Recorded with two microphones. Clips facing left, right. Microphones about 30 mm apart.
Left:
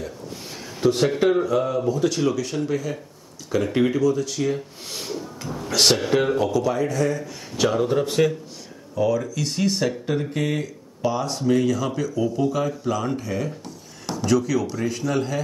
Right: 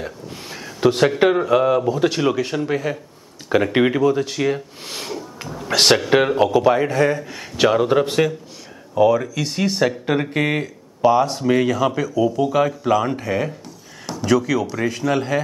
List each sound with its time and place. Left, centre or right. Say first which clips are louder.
0.7 s speech: right 4 dB; right
13.7 s a sound: even; centre
14.2 s speech: right 3 dB; centre